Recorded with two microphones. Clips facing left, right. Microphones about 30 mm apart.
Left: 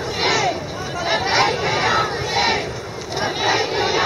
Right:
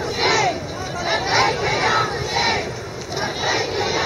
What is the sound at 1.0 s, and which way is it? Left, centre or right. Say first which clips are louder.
Crowd: left 1 dB; centre.